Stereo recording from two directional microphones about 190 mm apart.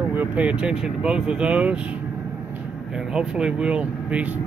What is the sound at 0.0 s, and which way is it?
Speech, 10° right (ahead or behind).